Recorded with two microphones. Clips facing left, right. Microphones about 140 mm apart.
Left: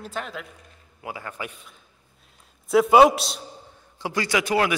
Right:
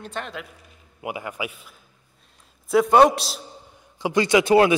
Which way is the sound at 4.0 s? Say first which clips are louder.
Right 6 dB; 20° right (ahead or behind).